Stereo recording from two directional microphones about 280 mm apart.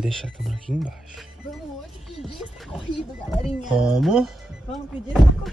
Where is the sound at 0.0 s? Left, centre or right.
Centre.